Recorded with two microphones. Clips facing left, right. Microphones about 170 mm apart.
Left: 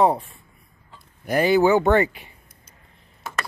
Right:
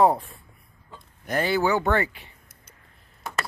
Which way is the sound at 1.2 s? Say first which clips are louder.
Left 6 dB; 10° left (ahead or behind).